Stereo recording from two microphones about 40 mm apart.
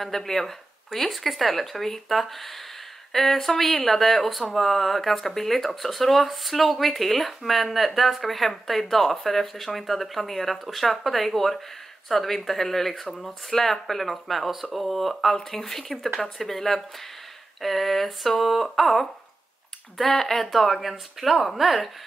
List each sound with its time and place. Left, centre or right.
0.0 s speech: centre
20.5 s speech: centre